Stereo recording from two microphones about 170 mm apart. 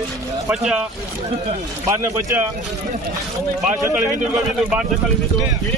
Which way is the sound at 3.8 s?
15° right (ahead or behind).